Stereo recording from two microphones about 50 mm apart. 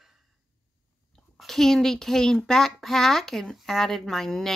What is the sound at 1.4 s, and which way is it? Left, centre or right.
Speech, centre.